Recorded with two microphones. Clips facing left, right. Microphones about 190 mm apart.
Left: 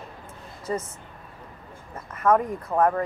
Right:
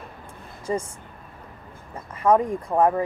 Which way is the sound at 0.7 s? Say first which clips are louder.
Right 2 dB; 20° right (ahead or behind).